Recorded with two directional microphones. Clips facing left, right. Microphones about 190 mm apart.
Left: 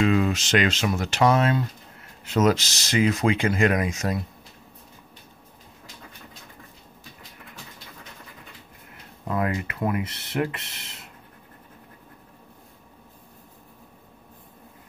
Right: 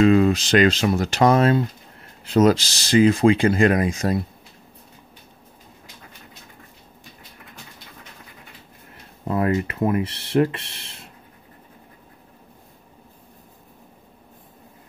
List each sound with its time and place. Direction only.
0.0 s speech: 35° right (ahead or behind)
9.3 s speech: 30° right (ahead or behind)